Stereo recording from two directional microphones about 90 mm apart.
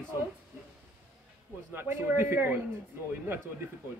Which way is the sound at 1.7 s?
25° right (ahead or behind).